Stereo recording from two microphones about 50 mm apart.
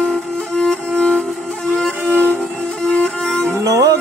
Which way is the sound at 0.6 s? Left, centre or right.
Centre.